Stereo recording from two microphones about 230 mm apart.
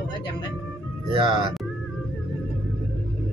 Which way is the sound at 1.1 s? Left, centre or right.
Right.